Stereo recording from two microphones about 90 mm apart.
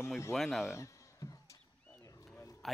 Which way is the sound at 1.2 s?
35° left (ahead or behind).